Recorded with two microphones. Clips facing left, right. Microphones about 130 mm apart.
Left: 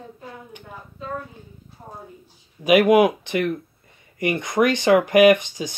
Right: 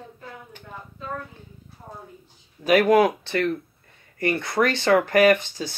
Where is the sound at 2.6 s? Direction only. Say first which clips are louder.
Left 2 dB; 15° left (ahead or behind).